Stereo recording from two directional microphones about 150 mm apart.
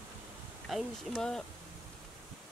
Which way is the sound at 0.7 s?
Centre (ahead or behind).